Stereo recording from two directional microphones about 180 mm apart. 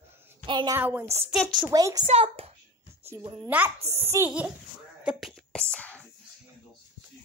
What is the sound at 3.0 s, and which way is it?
A child's voice, 15° right (ahead or behind).